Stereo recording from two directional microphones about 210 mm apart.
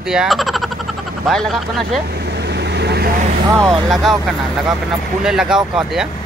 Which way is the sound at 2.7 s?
50° right (ahead or behind).